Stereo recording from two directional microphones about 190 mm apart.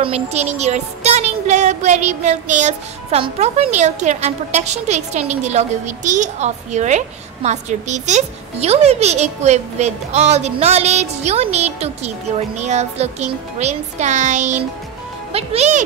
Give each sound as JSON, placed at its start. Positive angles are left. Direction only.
{"t": 0.0, "sound": "a woman's voice", "side_deg": -35}